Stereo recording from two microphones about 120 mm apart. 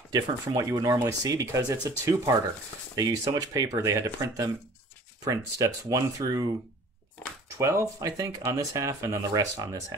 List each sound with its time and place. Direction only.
0.1 s speech: 30° right (ahead or behind)
7.5 s speech: 25° right (ahead or behind)